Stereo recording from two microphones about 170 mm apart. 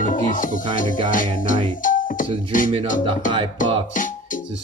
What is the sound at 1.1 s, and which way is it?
Music, 50° left (ahead or behind).